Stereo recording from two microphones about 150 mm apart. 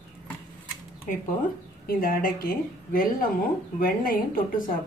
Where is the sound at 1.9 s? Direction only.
70° left (ahead or behind).